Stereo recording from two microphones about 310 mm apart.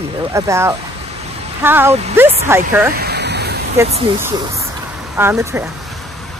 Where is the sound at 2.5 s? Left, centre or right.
Centre.